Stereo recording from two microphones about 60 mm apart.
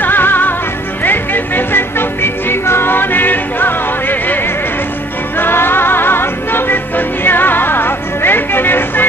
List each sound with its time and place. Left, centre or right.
0.0 s music: left
5.4 s music: left